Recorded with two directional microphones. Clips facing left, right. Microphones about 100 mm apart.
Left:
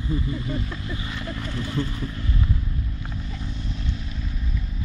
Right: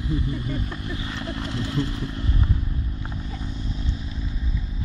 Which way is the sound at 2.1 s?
35° right (ahead or behind).